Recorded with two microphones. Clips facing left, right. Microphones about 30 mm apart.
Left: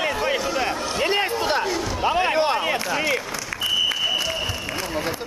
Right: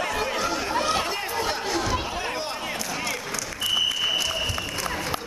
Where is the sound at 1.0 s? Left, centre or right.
Left.